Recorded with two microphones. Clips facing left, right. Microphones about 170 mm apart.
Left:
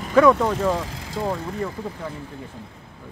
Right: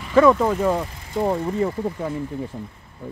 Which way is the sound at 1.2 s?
25° right (ahead or behind).